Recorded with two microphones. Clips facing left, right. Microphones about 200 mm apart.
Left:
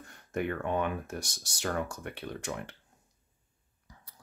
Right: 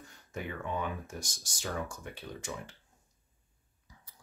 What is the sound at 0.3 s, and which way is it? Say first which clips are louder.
Speech: left 6 dB; 55° left (ahead or behind).